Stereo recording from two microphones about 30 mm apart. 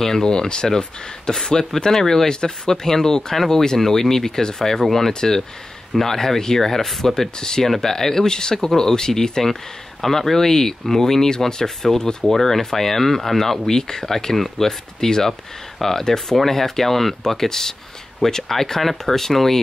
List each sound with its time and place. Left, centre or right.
0.0 s speech: centre
7.2 s speech: centre
10.0 s speech: centre